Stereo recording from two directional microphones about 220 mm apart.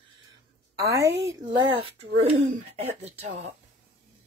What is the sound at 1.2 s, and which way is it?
Speech, 20° right (ahead or behind).